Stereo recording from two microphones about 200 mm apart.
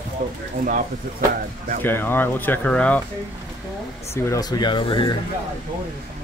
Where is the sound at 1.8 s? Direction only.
10° left (ahead or behind).